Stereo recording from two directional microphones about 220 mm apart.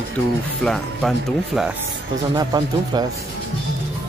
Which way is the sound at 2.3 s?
20° right (ahead or behind).